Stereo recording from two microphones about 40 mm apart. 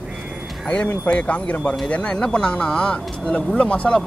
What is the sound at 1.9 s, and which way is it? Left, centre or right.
Speech, left.